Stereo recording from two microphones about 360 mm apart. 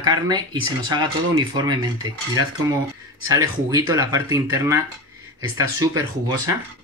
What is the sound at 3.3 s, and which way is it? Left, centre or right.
Speech, centre.